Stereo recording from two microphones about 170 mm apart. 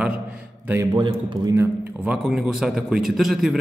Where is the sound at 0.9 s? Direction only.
30° right (ahead or behind).